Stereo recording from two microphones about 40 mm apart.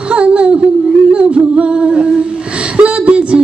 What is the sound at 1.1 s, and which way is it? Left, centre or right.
Music, right.